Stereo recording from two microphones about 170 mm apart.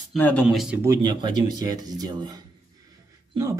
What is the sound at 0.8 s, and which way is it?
Speech, 25° right (ahead or behind).